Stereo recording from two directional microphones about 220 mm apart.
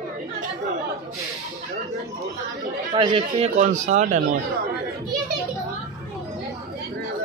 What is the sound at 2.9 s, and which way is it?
Speech, 25° right (ahead or behind).